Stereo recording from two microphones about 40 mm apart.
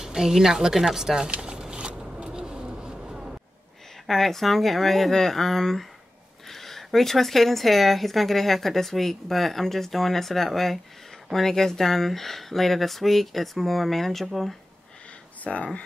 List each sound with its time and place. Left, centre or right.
0.0 s a woman's voice: centre
1.3 s a sound: right
2.1 s vehicle: centre
4.1 s a woman's voice: centre
15.4 s speech: left